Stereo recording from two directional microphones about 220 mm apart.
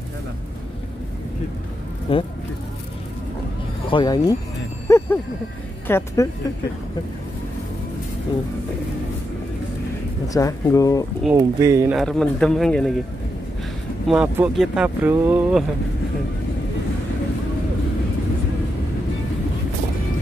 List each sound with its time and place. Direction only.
2.1 s speech: 25° left (ahead or behind)
3.9 s speech: 20° left (ahead or behind)
4.8 s a sound: 10° left (ahead or behind)
5.9 s speech: 10° left (ahead or behind)
10.2 s speech: 15° left (ahead or behind)
11.3 s speech: 15° right (ahead or behind)
12.0 s speech: 5° left (ahead or behind)
14.0 s speech: 5° right (ahead or behind)